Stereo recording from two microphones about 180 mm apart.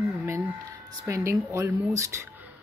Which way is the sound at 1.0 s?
15° right (ahead or behind).